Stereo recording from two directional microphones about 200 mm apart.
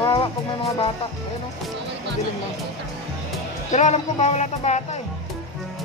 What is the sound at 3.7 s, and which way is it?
Music, 35° left (ahead or behind).